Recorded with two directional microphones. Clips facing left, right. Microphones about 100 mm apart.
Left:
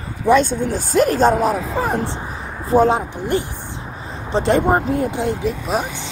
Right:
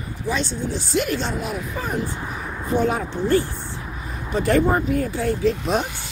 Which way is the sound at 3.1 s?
15° left (ahead or behind).